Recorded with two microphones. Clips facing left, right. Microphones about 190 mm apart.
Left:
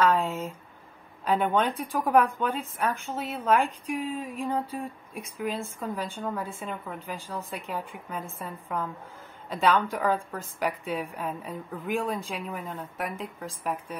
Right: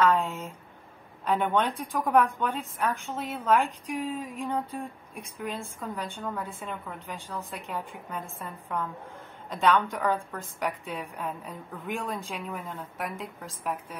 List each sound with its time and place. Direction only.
0.0 s a woman's voice: centre (ahead or behind)